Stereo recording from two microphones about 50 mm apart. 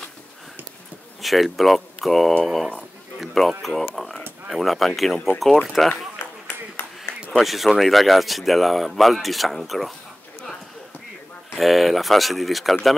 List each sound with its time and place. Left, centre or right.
1.2 s speech: centre
6.1 s a sound: left
7.3 s speech: centre
11.5 s speech: centre